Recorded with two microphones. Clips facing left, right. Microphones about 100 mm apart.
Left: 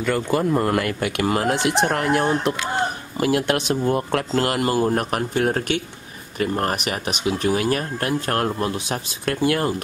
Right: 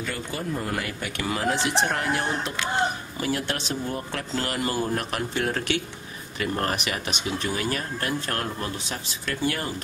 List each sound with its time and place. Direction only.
0.0 s speech: 60° left (ahead or behind)